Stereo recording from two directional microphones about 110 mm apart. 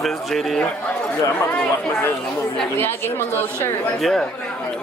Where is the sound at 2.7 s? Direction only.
20° left (ahead or behind).